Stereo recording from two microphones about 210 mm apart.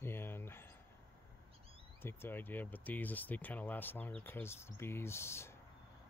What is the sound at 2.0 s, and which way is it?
Speech, 10° left (ahead or behind).